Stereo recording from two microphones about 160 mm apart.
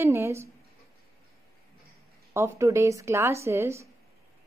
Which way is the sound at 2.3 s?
15° right (ahead or behind).